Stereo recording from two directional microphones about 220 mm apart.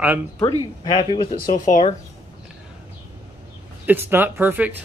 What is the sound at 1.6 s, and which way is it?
Speech, 30° left (ahead or behind).